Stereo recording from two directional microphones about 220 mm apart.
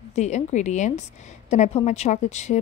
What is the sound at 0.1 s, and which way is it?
A woman's voice, 30° left (ahead or behind).